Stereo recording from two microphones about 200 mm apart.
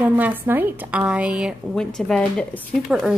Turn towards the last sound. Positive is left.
turn(degrees=0)  # may be behind; listen again after turning